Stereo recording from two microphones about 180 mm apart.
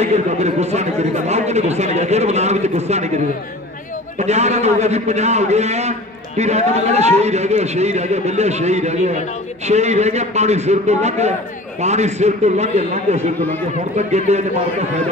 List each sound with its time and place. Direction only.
0.0 s a man's voice: 40° right (ahead or behind)
4.2 s a man's voice: 40° right (ahead or behind)